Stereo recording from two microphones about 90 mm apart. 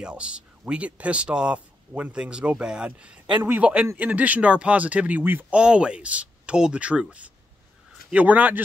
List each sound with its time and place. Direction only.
0.0 s speech: 10° right (ahead or behind)
5.6 s speech: 10° right (ahead or behind)